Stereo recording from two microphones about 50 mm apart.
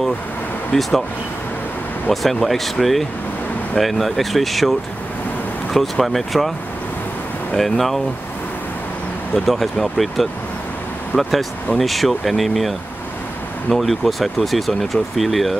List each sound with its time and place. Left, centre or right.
0.7 s speech: centre
2.0 s speech: centre
7.5 s speech: centre
9.3 s speech: centre
11.1 s speech: left
11.8 s speech: centre